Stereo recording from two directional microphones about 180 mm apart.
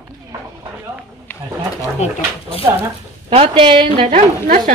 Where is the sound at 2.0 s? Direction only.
40° left (ahead or behind).